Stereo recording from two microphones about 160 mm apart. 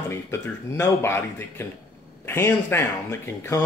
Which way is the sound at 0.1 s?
15° left (ahead or behind).